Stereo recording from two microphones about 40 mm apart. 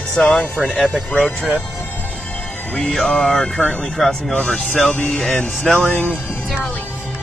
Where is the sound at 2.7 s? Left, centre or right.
Centre.